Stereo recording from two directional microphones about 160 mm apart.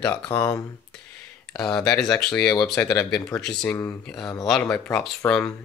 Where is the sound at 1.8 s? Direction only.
5° left (ahead or behind).